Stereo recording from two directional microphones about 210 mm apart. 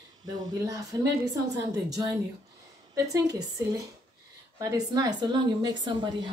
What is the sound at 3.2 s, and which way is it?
A woman's voice, 15° right (ahead or behind).